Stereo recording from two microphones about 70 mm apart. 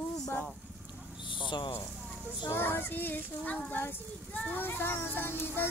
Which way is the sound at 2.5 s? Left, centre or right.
Left.